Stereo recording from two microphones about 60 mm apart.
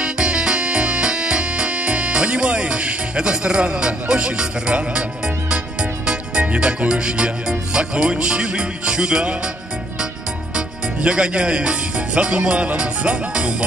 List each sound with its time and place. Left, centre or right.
0.0 s music: centre
10.5 s speech: centre